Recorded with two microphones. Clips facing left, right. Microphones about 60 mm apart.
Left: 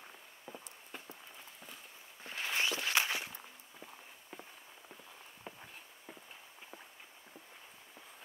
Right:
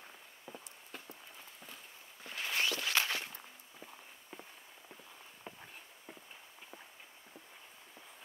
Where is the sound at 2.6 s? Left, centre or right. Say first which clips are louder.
Even; left.